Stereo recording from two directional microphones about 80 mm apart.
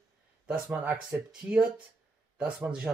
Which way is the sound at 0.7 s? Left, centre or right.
Right.